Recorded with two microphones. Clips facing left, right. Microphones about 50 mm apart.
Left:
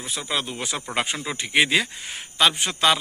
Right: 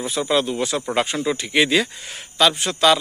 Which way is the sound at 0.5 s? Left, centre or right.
Centre.